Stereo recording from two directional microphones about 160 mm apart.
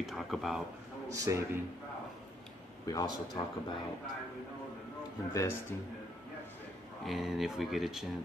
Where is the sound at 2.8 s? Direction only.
25° left (ahead or behind).